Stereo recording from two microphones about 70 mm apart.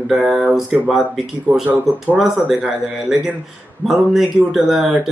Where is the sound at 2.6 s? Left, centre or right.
Centre.